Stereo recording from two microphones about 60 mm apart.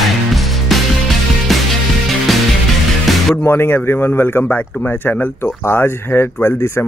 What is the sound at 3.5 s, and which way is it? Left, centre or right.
Speech, left.